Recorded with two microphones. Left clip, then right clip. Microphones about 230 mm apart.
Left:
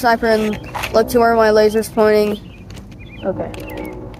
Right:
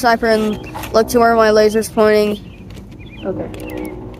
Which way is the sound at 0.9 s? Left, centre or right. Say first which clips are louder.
Right 1 dB; right.